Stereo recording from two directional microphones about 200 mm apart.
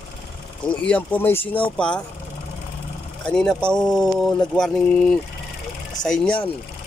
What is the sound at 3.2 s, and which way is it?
Speech, 5° left (ahead or behind).